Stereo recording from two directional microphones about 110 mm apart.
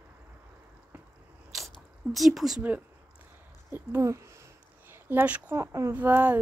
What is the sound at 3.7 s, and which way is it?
Speech, 20° right (ahead or behind).